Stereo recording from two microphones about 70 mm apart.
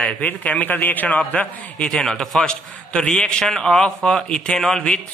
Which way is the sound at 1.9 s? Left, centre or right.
Centre.